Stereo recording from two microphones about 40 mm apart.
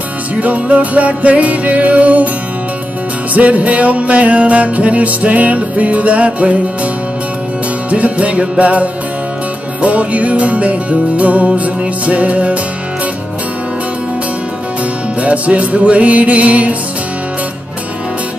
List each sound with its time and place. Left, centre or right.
0.4 s music: right
3.3 s music: right
7.9 s music: right
15.1 s music: right